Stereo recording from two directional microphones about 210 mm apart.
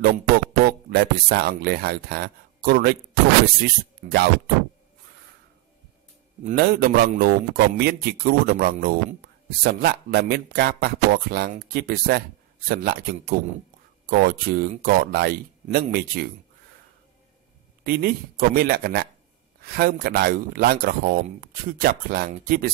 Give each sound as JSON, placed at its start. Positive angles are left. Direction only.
{"t": 0.0, "sound": "speech", "side_deg": -50}
{"t": 6.5, "sound": "speech", "side_deg": -45}
{"t": 17.8, "sound": "speech", "side_deg": -45}